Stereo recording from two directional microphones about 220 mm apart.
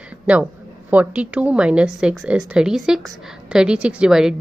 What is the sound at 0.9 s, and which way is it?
A woman's voice, 5° right (ahead or behind).